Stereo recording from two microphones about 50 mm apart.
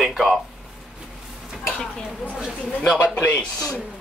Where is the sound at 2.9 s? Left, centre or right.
Left.